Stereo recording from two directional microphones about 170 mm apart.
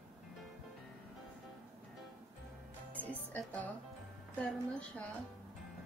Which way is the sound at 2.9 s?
10° left (ahead or behind).